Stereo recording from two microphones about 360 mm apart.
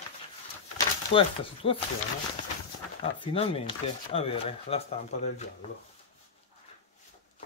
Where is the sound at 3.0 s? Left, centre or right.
Centre.